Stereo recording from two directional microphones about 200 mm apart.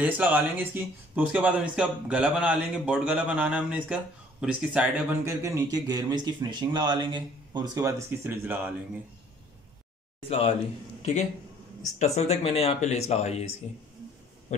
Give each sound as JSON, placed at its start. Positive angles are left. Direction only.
{"t": 0.0, "sound": "speech", "side_deg": -10}
{"t": 12.0, "sound": "speech", "side_deg": 30}